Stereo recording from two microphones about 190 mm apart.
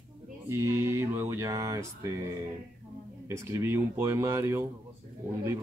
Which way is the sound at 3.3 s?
15° right (ahead or behind).